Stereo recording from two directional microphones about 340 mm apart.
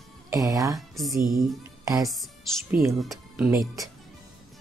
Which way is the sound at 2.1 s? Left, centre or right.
Centre.